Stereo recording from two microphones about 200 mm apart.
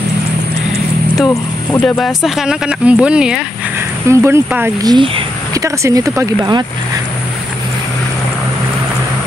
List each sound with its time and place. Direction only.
1.1 s speech: 5° left (ahead or behind)
4.9 s a sound: 25° right (ahead or behind)
5.6 s speech: 15° right (ahead or behind)